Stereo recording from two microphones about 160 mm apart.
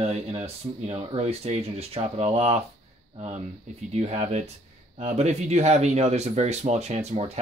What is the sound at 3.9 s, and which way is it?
Speech, 40° right (ahead or behind).